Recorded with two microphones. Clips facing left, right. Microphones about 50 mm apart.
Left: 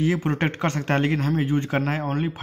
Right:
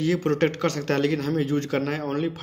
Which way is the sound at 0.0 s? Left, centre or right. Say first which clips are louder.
Right 1 dB; left.